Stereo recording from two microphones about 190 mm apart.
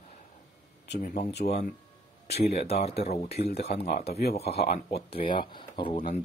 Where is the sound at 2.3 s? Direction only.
35° left (ahead or behind).